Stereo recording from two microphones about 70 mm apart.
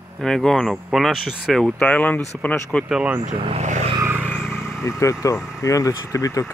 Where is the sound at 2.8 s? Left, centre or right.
Centre.